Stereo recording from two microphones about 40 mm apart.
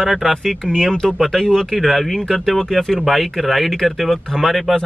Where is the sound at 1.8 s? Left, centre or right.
Centre.